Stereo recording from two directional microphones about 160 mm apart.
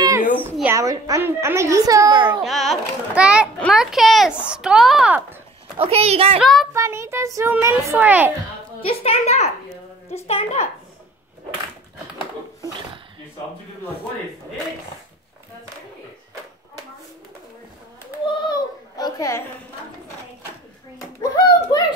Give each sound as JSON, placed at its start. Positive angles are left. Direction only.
{"t": 0.4, "sound": "a woman's voice", "side_deg": -10}
{"t": 2.4, "sound": "speech", "side_deg": 0}
{"t": 5.8, "sound": "a woman's voice", "side_deg": -40}
{"t": 6.4, "sound": "speech", "side_deg": 0}
{"t": 6.7, "sound": "a child's voice", "side_deg": -15}
{"t": 8.8, "sound": "a child's voice", "side_deg": 40}
{"t": 18.5, "sound": "a sound", "side_deg": 25}
{"t": 21.2, "sound": "a child's voice", "side_deg": 25}